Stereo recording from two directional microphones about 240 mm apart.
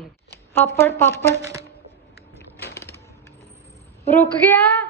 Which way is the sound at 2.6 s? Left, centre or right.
Centre.